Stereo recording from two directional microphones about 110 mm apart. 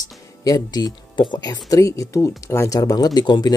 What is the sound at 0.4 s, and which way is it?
Speech, 35° left (ahead or behind).